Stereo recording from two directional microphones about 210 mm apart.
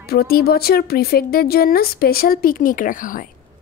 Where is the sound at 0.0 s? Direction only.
45° left (ahead or behind).